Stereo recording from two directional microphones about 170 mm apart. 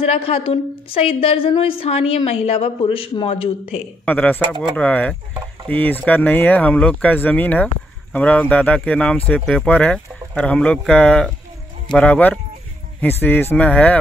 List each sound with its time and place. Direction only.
0.0 s a woman's voice: 35° left (ahead or behind)
4.0 s speech: 10° left (ahead or behind)